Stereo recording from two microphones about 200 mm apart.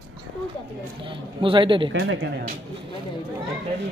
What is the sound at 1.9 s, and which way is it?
Speech, 70° right (ahead or behind).